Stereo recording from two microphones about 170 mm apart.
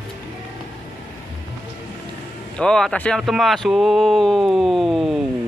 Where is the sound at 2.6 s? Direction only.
5° left (ahead or behind).